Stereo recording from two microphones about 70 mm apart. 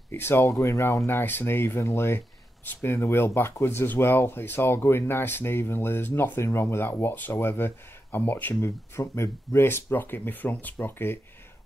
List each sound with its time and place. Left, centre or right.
0.1 s speech: left
0.6 s speech: left
8.5 s speech: left